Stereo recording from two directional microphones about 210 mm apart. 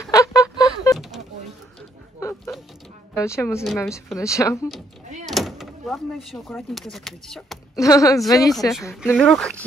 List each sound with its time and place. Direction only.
0.1 s a sound: 15° left (ahead or behind)
2.1 s a sound: 15° left (ahead or behind)
3.2 s speech: 10° left (ahead or behind)
3.6 s speech: centre (ahead or behind)
4.2 s speech: 15° left (ahead or behind)
5.3 s speech: centre (ahead or behind)
7.7 s speech: 15° left (ahead or behind)
8.9 s speech: 5° right (ahead or behind)